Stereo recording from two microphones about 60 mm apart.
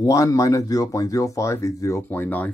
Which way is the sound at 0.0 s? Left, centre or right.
Left.